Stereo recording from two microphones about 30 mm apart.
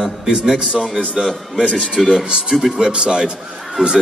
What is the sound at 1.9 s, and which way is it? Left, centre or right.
Speech, centre.